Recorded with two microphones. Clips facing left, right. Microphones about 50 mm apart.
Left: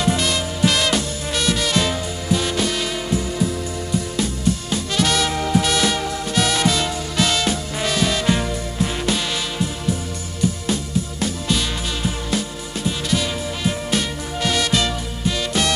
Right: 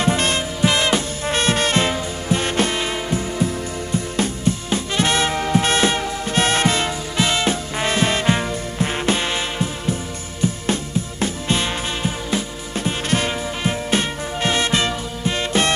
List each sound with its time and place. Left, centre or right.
0.0 s music: right
0.7 s music: right
4.2 s music: right
10.7 s music: right
12.8 s music: right